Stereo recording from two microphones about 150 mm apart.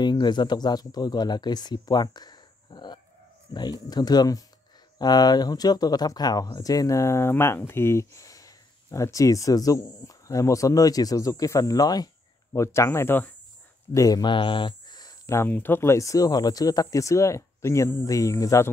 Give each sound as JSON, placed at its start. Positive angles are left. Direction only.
{"t": 0.0, "sound": "speech", "side_deg": 30}